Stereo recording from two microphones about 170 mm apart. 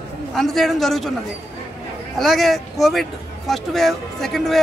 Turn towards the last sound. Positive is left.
turn(degrees=0)  # may be behind; listen again after turning